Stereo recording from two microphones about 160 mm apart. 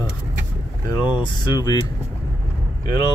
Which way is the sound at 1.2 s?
25° left (ahead or behind).